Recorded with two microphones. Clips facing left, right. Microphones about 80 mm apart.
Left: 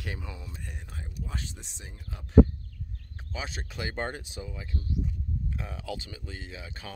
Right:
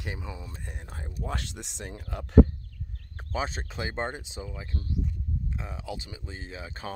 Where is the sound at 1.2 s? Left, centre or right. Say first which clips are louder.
Right 7 dB; right.